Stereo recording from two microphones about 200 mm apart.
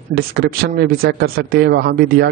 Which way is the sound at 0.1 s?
50° right (ahead or behind).